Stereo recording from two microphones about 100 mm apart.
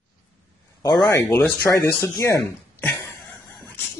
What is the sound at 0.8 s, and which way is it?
Speech, 40° left (ahead or behind).